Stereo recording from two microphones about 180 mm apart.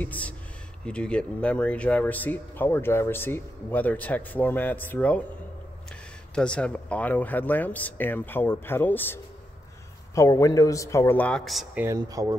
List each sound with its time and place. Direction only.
0.0 s speech: 10° left (ahead or behind)
6.3 s speech: 5° left (ahead or behind)
11.8 s speech: 20° right (ahead or behind)